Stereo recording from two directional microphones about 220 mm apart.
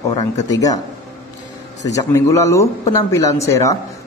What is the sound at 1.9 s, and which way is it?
A woman's voice, 15° left (ahead or behind).